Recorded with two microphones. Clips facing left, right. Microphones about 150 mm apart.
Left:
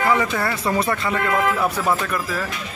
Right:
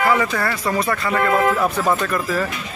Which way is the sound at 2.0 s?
5° left (ahead or behind).